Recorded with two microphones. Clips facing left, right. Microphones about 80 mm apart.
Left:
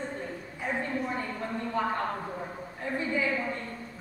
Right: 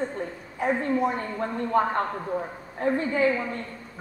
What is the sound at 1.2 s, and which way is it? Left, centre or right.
A woman's voice, right.